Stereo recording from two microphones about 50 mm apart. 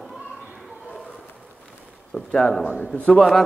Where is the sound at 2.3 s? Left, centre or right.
Centre.